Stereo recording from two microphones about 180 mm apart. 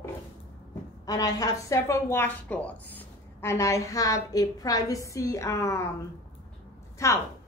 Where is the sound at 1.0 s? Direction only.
20° left (ahead or behind).